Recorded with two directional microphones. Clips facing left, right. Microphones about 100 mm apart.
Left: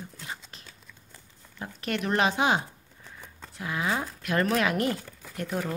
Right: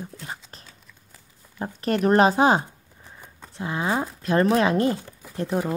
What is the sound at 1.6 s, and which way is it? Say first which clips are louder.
A woman's voice: right 8 dB; 35° right (ahead or behind).